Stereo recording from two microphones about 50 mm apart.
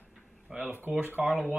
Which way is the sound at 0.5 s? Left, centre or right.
Centre.